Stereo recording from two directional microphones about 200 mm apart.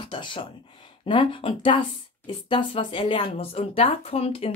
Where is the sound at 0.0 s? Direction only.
25° left (ahead or behind).